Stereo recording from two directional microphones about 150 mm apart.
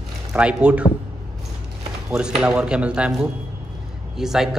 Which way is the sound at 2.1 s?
5° right (ahead or behind).